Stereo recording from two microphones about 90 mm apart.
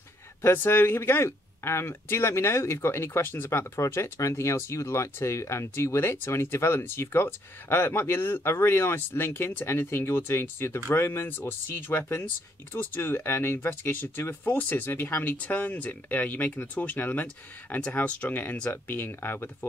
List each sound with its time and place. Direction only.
0.4 s speech: 25° left (ahead or behind)